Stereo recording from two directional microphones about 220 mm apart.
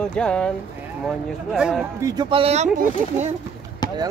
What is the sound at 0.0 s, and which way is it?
Speech, 5° left (ahead or behind).